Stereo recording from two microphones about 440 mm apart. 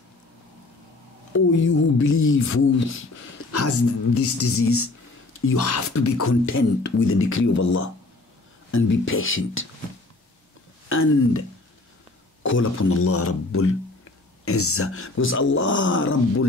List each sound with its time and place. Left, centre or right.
1.3 s speech: left
5.5 s speech: left
5.9 s speech: left
10.9 s speech: left
12.4 s speech: left